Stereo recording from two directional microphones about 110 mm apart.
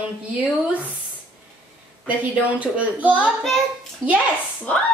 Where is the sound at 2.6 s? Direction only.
10° right (ahead or behind).